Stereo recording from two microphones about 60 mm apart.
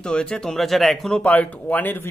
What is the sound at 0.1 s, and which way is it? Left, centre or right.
Speech, centre.